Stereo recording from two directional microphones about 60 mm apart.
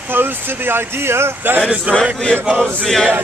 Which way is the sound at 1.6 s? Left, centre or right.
Centre.